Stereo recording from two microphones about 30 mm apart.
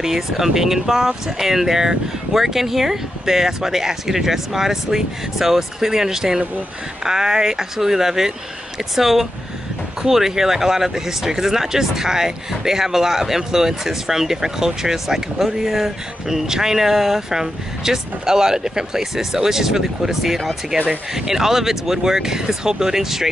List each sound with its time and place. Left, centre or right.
0.0 s speech: centre
16.3 s speech: centre